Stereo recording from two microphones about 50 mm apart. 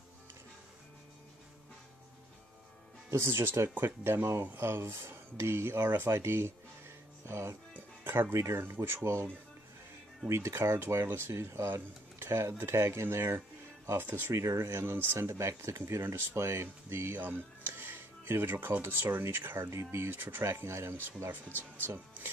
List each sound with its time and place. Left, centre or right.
3.1 s speech: right
3.7 s speech: right
4.6 s speech: right
8.5 s speech: right
13.9 s speech: right
14.3 s speech: right
15.1 s speech: right
17.2 s speech: right
19.7 s speech: right
20.6 s speech: right
21.5 s speech: left
21.8 s speech: right